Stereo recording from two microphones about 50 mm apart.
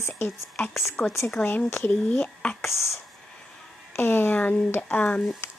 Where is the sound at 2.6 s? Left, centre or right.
Left.